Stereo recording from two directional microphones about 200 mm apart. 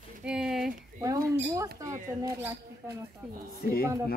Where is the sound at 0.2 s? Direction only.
5° right (ahead or behind).